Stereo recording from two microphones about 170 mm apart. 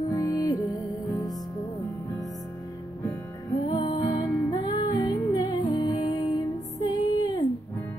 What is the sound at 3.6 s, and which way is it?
Music, 25° left (ahead or behind).